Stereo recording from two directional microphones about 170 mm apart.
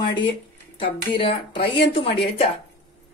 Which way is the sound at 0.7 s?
30° left (ahead or behind).